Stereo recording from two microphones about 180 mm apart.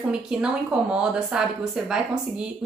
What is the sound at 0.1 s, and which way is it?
A woman's voice, 5° right (ahead or behind).